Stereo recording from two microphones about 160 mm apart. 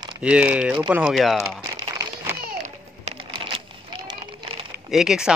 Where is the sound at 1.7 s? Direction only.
25° right (ahead or behind).